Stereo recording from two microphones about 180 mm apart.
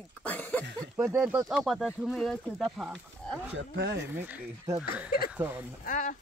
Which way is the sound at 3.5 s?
80° right.